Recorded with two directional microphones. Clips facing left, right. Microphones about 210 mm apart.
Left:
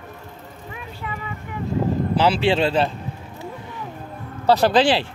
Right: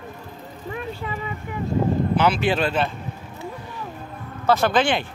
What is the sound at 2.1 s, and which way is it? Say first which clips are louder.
Speech: left 5 dB; 30° left (ahead or behind).